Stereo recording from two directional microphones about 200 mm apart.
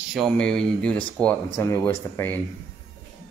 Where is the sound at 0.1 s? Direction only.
Centre (ahead or behind).